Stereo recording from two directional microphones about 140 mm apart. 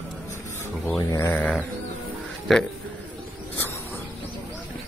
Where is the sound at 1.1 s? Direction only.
25° left (ahead or behind).